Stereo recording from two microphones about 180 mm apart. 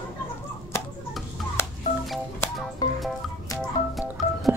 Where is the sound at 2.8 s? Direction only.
20° left (ahead or behind).